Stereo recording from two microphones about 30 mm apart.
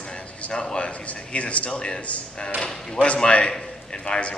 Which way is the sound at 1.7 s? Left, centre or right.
Left.